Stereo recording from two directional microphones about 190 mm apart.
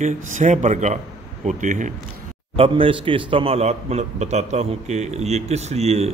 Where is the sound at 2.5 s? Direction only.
30° right (ahead or behind).